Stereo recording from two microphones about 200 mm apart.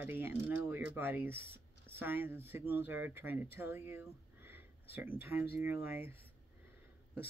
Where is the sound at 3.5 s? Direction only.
10° right (ahead or behind).